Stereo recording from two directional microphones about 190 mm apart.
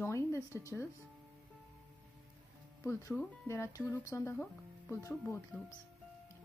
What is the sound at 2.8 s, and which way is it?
Speech, 15° left (ahead or behind).